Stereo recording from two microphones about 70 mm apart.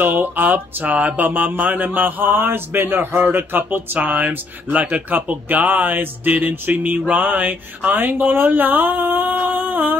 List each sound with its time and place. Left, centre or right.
0.0 s speech: right